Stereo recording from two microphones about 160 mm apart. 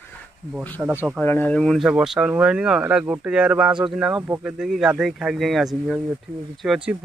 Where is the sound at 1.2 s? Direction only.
10° left (ahead or behind).